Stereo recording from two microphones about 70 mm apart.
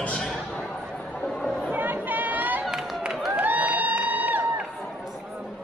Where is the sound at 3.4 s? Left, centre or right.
Right.